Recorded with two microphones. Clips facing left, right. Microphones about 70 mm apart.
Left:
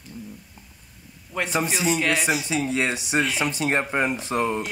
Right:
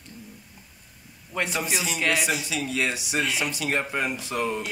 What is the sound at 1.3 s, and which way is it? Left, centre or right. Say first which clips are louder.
Speech: left 3 dB; centre.